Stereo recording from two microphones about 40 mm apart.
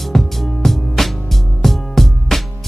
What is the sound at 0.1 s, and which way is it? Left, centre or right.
Music, centre.